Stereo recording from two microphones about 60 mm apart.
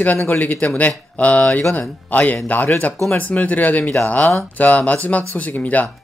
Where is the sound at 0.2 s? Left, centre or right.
Left.